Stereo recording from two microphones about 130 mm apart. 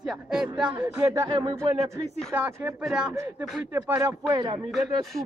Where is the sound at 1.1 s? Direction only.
35° right (ahead or behind).